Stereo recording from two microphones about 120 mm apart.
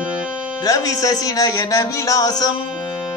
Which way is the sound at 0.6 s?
30° left (ahead or behind).